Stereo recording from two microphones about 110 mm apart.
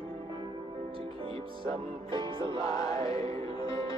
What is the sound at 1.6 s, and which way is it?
Music, 50° right (ahead or behind).